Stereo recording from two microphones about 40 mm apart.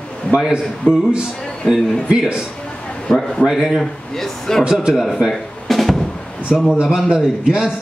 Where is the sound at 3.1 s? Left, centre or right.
Centre.